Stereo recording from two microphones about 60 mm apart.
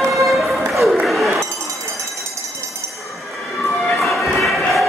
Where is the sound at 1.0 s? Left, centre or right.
Centre.